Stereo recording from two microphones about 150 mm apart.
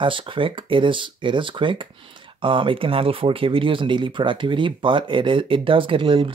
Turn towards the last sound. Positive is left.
turn(degrees=-35)  # may be behind; listen again after turning